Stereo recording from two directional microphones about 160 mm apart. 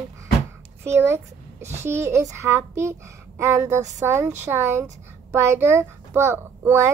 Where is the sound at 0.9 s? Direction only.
15° right (ahead or behind).